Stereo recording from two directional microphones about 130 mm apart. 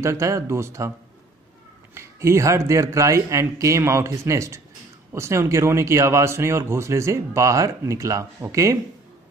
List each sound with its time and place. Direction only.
0.0 s speech: 25° right (ahead or behind)
2.0 s speech: 20° right (ahead or behind)